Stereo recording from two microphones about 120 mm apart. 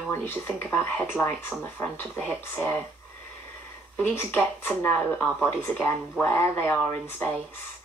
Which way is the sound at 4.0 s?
15° left (ahead or behind).